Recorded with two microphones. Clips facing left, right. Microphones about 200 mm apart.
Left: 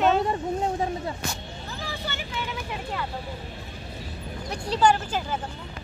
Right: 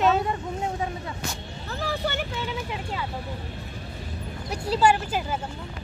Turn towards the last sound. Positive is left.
turn(degrees=-10)  # may be behind; listen again after turning